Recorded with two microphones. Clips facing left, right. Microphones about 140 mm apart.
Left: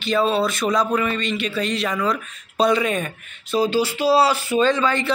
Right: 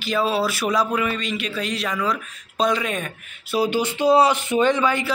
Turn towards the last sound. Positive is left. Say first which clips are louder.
# even
turn(degrees=-10)  # may be behind; listen again after turning